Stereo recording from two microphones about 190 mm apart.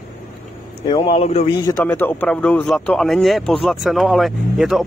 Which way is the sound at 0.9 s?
30° left (ahead or behind).